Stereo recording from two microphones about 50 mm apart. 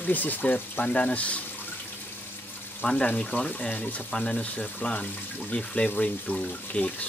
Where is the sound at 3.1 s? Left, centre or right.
Left.